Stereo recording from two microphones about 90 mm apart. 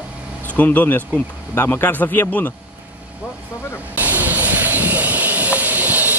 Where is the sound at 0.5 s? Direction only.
20° left (ahead or behind).